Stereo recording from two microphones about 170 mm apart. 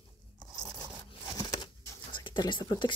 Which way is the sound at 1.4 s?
25° left (ahead or behind).